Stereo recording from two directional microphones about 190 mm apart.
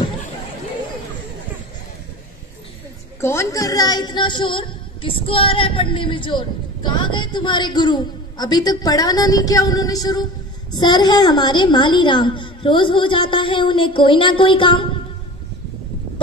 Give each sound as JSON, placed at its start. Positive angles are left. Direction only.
{"t": 3.2, "sound": "a woman's voice", "side_deg": 15}